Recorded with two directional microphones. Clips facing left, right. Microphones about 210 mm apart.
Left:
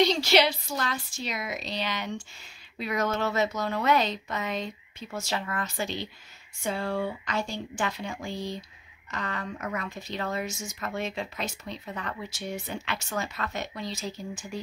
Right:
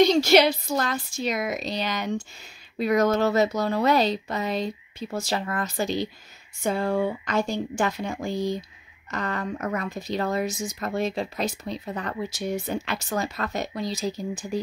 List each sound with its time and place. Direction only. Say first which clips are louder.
0.0 s speech: right 5 dB; 45° right (ahead or behind)